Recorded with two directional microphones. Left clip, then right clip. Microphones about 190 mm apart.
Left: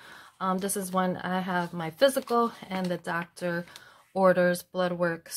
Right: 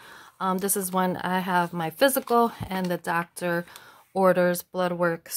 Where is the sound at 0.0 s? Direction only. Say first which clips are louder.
Right 3 dB; 30° right (ahead or behind).